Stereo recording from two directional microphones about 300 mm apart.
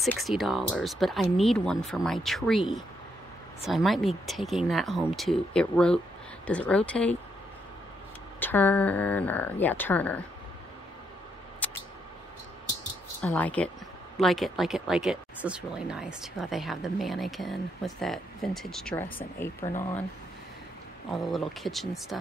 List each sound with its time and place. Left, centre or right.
0.0 s speech: centre
8.4 s speech: centre
11.6 s a sound: centre
13.2 s speech: centre
19.0 s speech: centre
21.1 s speech: centre